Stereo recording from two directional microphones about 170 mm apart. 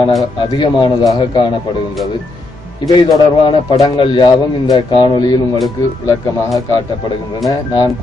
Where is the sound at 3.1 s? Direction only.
25° left (ahead or behind).